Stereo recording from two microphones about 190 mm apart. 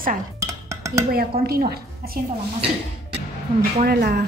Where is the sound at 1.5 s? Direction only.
55° right (ahead or behind).